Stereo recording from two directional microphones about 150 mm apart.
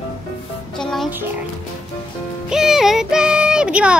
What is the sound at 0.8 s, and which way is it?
Music, 5° left (ahead or behind).